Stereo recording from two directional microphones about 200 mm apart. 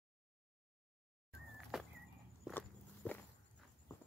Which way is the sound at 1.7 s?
Centre (ahead or behind).